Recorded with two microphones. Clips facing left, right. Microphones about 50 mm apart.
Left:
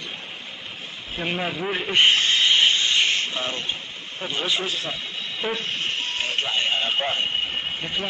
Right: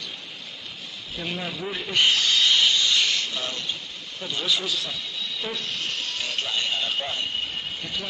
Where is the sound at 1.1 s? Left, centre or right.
Left.